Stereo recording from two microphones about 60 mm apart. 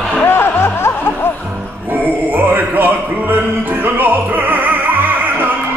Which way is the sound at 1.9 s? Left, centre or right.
Right.